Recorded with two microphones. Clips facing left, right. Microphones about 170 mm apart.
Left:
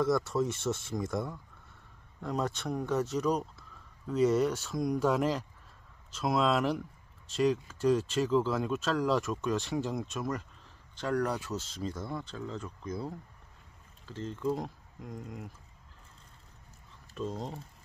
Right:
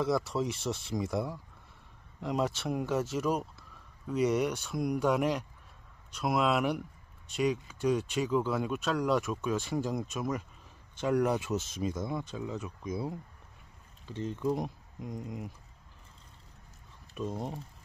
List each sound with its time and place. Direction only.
0.0 s speech: centre (ahead or behind)
11.0 s speech: 20° right (ahead or behind)
17.1 s speech: 15° right (ahead or behind)